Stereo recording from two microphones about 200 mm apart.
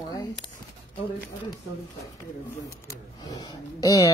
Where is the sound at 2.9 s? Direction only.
20° left (ahead or behind).